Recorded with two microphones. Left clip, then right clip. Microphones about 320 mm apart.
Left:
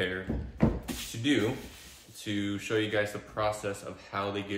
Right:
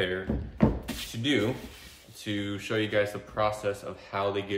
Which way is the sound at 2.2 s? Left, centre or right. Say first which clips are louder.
Right 1 dB; centre.